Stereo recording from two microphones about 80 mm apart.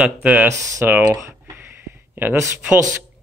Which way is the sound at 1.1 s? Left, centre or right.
Right.